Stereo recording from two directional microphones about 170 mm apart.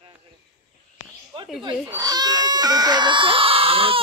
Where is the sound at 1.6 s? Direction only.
25° right (ahead or behind).